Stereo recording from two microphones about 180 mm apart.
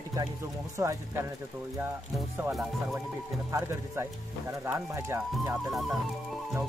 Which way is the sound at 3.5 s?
15° right (ahead or behind).